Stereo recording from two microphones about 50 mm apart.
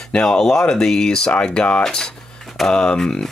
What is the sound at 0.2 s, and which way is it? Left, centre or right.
Speech, centre.